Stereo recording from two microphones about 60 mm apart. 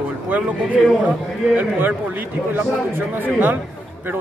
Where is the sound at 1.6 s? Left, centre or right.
Right.